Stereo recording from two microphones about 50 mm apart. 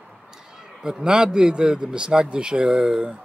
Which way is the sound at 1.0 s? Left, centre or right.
Centre.